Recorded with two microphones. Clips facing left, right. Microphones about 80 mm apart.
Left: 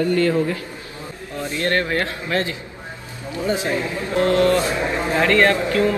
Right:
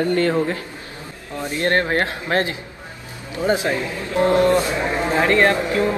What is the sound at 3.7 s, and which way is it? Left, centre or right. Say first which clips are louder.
A man's voice: even; right.